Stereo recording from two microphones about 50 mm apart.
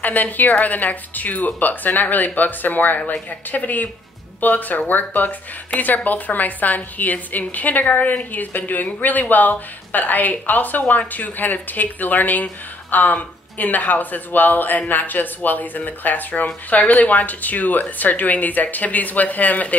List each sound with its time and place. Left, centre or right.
0.0 s speech: left